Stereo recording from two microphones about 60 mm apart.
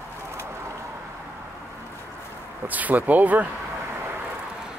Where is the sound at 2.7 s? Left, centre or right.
Right.